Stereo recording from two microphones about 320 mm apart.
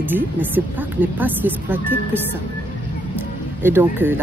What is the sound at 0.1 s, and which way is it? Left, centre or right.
Speech, centre.